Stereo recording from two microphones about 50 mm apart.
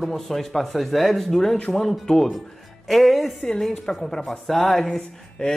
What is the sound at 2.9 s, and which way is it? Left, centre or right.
A man's voice, centre.